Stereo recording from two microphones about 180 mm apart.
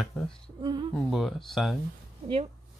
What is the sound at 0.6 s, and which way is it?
Speech, 25° right (ahead or behind).